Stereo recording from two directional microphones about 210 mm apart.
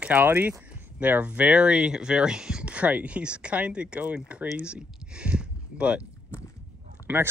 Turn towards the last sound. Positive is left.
turn(degrees=-10)  # may be behind; listen again after turning